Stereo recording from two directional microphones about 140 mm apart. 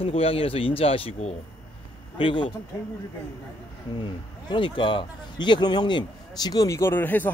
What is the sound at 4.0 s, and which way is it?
Speech, 35° left (ahead or behind).